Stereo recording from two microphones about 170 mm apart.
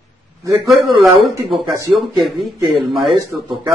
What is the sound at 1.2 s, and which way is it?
Speech, 30° right (ahead or behind).